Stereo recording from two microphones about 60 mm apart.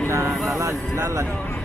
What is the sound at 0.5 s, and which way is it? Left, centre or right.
Speech, right.